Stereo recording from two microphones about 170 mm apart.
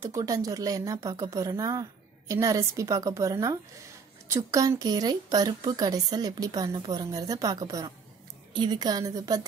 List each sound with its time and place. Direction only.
0.0 s a woman's voice: 20° right (ahead or behind)